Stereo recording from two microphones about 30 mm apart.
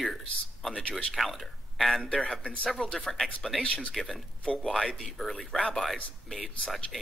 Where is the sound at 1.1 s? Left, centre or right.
Centre.